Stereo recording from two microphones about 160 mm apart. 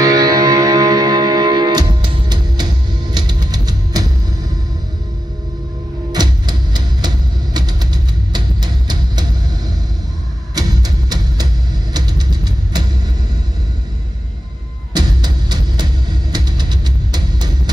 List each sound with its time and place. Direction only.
0.0 s music: 25° right (ahead or behind)
6.1 s music: 25° right (ahead or behind)
10.5 s music: 25° right (ahead or behind)
11.9 s vehicle: 25° right (ahead or behind)
15.0 s music: 25° right (ahead or behind)